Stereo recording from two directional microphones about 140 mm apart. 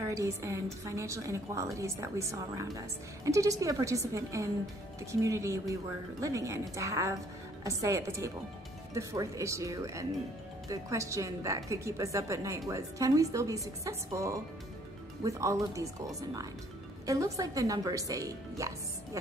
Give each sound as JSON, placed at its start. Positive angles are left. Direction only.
{"t": 0.1, "sound": "a woman's voice", "side_deg": -20}